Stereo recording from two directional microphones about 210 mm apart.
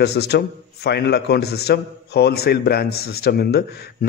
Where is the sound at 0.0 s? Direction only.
50° left (ahead or behind).